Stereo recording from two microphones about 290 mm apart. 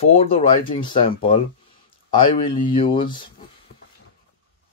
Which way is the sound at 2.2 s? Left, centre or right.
Left.